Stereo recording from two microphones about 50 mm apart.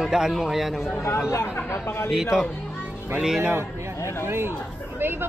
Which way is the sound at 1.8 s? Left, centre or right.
Left.